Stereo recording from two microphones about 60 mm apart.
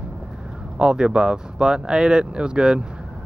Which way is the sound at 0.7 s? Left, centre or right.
Centre.